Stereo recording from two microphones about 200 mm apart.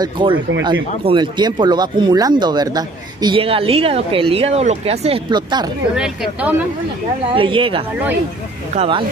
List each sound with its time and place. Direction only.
0.0 s speech: 25° right (ahead or behind)
5.9 s speech: 5° right (ahead or behind)
7.3 s speech: 25° right (ahead or behind)